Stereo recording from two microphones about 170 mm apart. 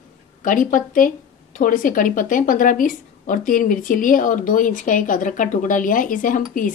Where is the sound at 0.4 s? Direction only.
50° left (ahead or behind).